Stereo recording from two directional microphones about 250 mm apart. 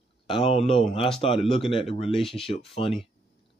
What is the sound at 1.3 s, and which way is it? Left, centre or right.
Speech, centre.